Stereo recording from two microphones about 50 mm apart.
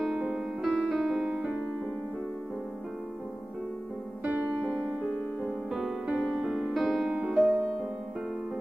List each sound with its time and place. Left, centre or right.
0.1 s music: centre
0.7 s music: centre
4.2 s music: right
5.7 s music: centre
7.3 s music: centre